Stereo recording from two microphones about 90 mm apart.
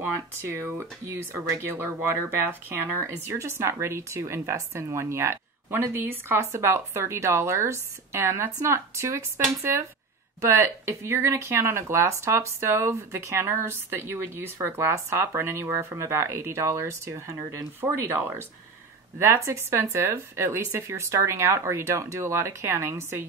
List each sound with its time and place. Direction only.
0.4 s speech: 30° right (ahead or behind)
3.0 s speech: 30° right (ahead or behind)